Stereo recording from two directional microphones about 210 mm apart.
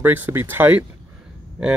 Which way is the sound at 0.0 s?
10° right (ahead or behind).